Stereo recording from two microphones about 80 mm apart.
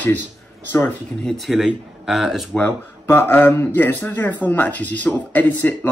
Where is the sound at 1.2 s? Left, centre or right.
Centre.